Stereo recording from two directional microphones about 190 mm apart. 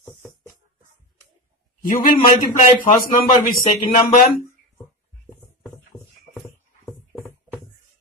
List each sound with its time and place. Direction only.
1.9 s a man's voice: 45° left (ahead or behind)